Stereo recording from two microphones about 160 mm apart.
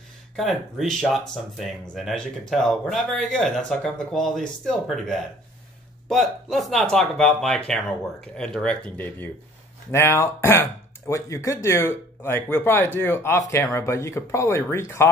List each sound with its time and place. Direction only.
0.4 s speech: centre (ahead or behind); by 15.0 s 15° left (ahead or behind)